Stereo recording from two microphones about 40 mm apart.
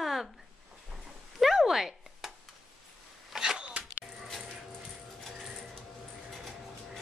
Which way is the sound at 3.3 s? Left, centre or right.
Centre.